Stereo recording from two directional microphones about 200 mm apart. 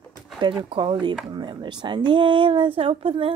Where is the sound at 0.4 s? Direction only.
25° right (ahead or behind).